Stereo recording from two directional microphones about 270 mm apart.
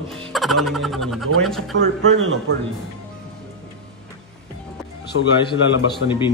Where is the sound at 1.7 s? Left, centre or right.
Right.